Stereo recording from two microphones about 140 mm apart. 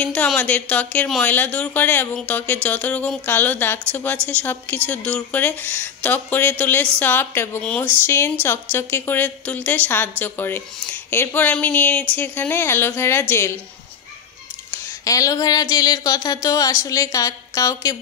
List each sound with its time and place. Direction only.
0.0 s a woman's voice: 10° left (ahead or behind)
14.7 s speech: 25° left (ahead or behind)